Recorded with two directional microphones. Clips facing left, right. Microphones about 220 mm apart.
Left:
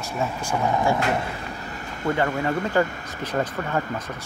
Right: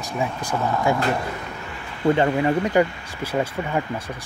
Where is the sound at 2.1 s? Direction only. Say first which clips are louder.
Right 4 dB; 20° right (ahead or behind).